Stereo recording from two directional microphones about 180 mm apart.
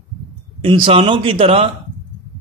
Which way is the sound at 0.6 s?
30° right (ahead or behind).